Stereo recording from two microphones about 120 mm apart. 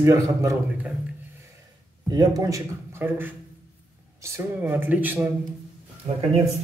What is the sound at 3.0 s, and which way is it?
Speech, 15° right (ahead or behind).